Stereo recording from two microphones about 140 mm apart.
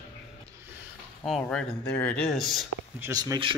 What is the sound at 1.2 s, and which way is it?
Speech, 5° left (ahead or behind).